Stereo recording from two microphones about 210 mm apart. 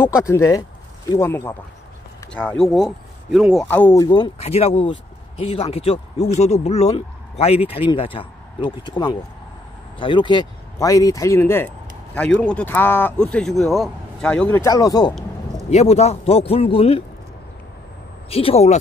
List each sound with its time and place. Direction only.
0.0 s speech: 15° left (ahead or behind); by 3.6 s 5° right (ahead or behind)
3.6 s speech: 10° left (ahead or behind)
15.7 s speech: 30° left (ahead or behind)
18.3 s speech: 30° left (ahead or behind)